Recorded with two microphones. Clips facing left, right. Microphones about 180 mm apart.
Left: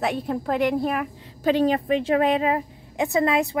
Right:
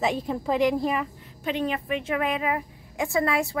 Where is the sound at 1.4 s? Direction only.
35° left (ahead or behind).